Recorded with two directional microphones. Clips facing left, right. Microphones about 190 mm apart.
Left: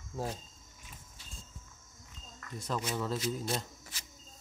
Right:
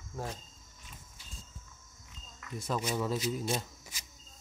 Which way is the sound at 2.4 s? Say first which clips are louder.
Right 2 dB; 10° right (ahead or behind).